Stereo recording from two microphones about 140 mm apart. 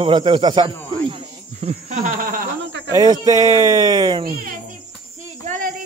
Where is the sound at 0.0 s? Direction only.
35° right (ahead or behind).